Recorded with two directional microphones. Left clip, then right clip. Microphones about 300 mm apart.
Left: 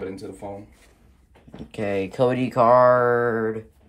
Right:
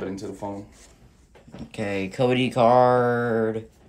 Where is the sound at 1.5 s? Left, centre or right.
Centre.